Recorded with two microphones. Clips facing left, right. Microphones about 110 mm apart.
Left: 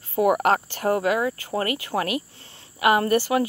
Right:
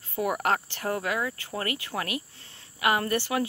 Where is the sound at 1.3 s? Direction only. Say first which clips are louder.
Left 7 dB; 35° left (ahead or behind).